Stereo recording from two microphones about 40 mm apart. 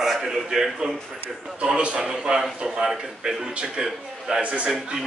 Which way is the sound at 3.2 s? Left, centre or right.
Right.